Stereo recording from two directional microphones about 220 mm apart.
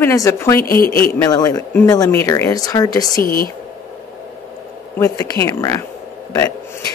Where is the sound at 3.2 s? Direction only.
40° left (ahead or behind).